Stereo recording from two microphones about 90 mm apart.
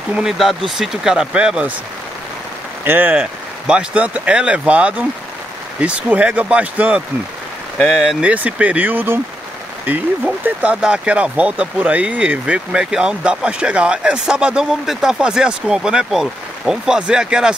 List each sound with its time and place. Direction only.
0.1 s speech: 5° right (ahead or behind)
2.8 s speech: 20° right (ahead or behind)
8.0 s speech: 10° right (ahead or behind)